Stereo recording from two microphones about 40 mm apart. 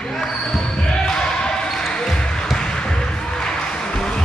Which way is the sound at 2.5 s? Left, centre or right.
Centre.